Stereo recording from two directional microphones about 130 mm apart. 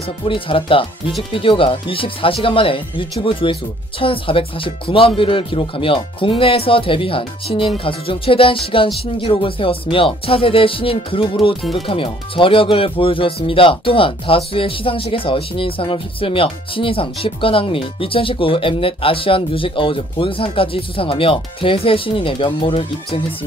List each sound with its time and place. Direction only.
0.2 s speech: 45° left (ahead or behind)